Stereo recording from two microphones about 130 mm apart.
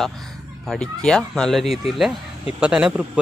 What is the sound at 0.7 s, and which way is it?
Speech, 5° left (ahead or behind).